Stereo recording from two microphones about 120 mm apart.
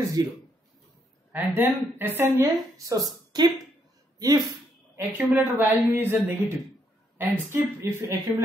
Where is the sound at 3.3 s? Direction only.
35° right (ahead or behind).